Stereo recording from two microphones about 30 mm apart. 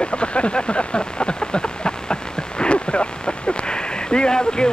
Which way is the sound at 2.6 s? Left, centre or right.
Left.